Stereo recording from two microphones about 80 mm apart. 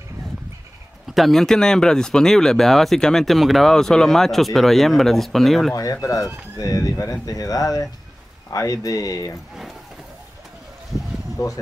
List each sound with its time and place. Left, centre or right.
1.0 s speech: centre
5.8 s speech: left
10.9 s a sound: centre
11.3 s speech: left